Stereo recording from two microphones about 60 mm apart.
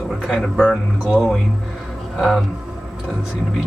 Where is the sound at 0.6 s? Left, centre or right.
Centre.